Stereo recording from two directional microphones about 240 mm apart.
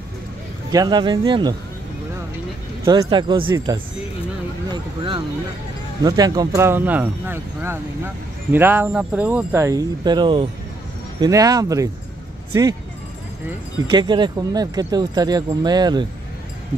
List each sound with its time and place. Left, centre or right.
0.7 s speech: centre
2.8 s speech: centre
4.6 s vehicle: right
6.0 s speech: centre
13.5 s speech: centre